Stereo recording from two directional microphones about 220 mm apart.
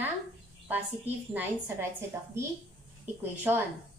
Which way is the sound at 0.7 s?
10° right (ahead or behind).